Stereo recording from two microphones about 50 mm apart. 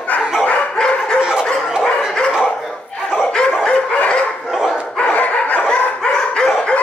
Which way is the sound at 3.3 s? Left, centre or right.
Centre.